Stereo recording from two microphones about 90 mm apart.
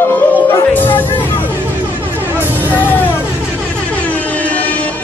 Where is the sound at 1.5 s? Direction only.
20° right (ahead or behind).